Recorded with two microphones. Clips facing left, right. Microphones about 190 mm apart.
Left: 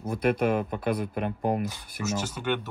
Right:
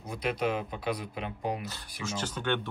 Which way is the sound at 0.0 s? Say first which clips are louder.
Left 6 dB; 50° left (ahead or behind).